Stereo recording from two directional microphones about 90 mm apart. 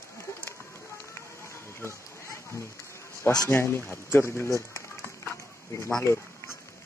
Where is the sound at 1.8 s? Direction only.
30° left (ahead or behind).